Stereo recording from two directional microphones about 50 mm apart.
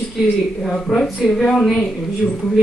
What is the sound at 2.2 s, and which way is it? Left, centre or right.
Speech, left.